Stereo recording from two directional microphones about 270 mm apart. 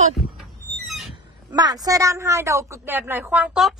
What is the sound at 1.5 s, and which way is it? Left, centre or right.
A woman's voice, centre.